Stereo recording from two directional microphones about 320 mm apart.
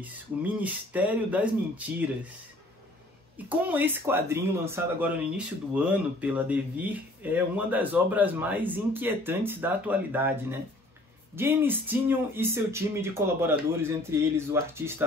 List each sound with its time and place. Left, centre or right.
0.0 s speech: centre
3.4 s speech: centre